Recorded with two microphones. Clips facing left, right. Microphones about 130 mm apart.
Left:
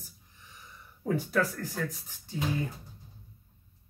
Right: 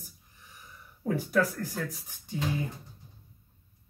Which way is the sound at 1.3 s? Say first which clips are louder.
Right 2 dB; 10° right (ahead or behind).